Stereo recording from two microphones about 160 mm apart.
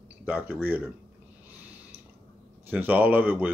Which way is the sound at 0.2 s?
10° right (ahead or behind).